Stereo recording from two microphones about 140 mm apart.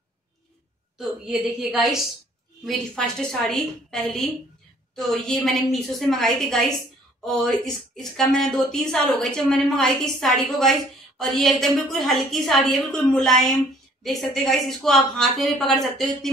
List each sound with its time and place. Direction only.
0.9 s a woman's voice: 5° right (ahead or behind)